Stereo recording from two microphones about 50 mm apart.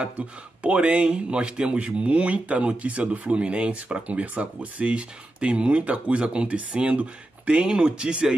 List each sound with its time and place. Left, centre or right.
0.6 s speech: right